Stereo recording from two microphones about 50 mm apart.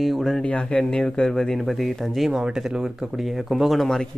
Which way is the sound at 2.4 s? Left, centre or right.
Centre.